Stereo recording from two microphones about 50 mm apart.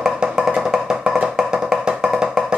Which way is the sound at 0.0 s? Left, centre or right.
Centre.